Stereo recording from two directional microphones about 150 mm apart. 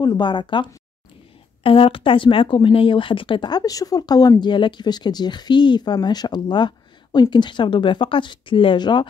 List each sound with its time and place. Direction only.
0.0 s speech: 30° left (ahead or behind)